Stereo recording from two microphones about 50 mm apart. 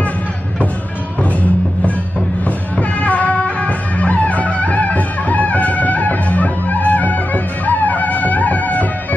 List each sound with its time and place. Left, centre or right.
2.4 s music: left